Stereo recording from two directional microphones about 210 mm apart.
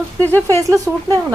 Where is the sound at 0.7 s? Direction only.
15° right (ahead or behind).